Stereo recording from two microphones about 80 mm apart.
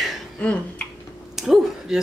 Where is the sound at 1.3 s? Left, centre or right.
Centre.